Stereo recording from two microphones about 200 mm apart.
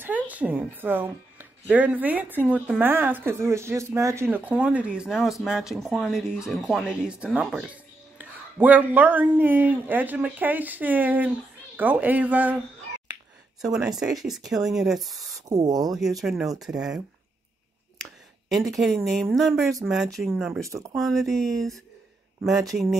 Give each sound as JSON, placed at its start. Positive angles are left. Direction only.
{"t": 0.0, "sound": "speech", "side_deg": -5}
{"t": 13.7, "sound": "speech", "side_deg": 0}
{"t": 15.5, "sound": "speech", "side_deg": -20}
{"t": 16.2, "sound": "speech", "side_deg": 0}
{"t": 18.5, "sound": "speech", "side_deg": 0}
{"t": 20.7, "sound": "speech", "side_deg": -15}
{"t": 21.0, "sound": "speech", "side_deg": 0}